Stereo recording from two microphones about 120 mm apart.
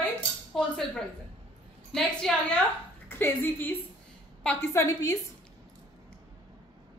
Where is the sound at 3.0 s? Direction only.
20° left (ahead or behind).